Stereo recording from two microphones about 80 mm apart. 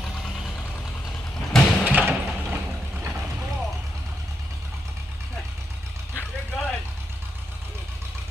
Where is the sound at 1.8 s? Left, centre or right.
Right.